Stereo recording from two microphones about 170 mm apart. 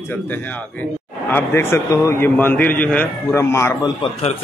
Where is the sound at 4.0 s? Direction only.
40° left (ahead or behind).